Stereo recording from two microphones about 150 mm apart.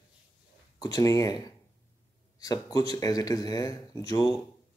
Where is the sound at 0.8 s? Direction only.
25° left (ahead or behind).